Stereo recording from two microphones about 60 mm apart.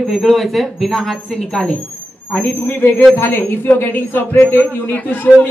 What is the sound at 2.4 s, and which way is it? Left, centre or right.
A man's voice, left.